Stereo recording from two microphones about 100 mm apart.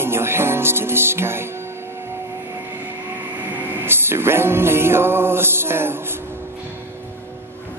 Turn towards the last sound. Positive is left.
turn(degrees=-25)  # may be behind; listen again after turning